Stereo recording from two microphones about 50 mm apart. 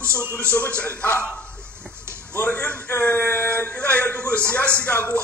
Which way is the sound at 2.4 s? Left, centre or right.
Left.